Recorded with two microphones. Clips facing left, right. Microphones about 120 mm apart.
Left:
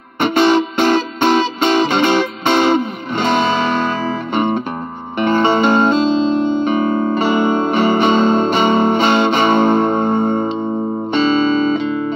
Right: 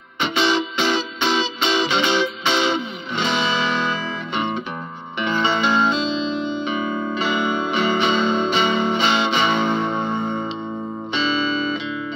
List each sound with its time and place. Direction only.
0.2 s music: 50° left (ahead or behind)
5.2 s music: 50° left (ahead or behind)